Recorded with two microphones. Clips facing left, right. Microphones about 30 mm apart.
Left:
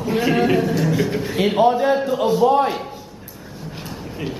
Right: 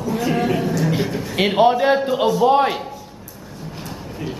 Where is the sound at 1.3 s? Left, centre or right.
Right.